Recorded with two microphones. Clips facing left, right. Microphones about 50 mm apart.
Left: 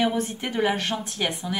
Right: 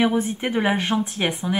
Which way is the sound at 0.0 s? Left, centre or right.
Centre.